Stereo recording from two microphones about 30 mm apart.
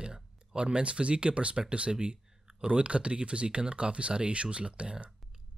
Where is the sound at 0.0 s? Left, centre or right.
Right.